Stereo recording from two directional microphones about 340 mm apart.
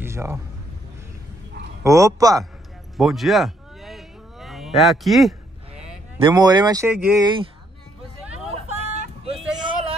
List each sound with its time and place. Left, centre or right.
0.0 s a sound: centre
1.8 s speech: centre
3.0 s cattle: centre
6.1 s speech: centre
8.9 s music: centre